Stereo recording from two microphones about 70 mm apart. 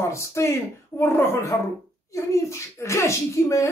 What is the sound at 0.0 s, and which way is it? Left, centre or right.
A woman's voice, left.